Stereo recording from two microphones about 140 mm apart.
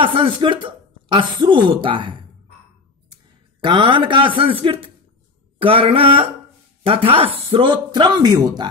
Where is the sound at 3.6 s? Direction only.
35° right (ahead or behind).